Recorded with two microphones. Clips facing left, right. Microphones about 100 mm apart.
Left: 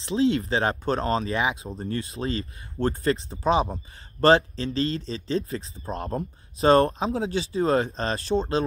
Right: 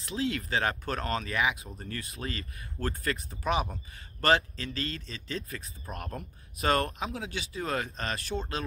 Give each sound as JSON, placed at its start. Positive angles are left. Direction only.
{"t": 0.0, "sound": "speech", "side_deg": 30}